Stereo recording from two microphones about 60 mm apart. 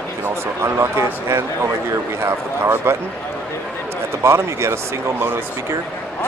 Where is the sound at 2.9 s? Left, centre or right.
Right.